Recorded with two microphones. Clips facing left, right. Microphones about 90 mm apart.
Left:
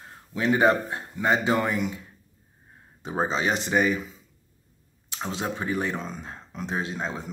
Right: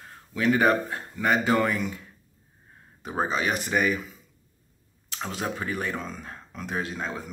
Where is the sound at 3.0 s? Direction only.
25° left (ahead or behind).